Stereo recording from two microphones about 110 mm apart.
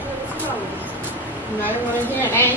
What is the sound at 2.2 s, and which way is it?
Speech, 15° left (ahead or behind).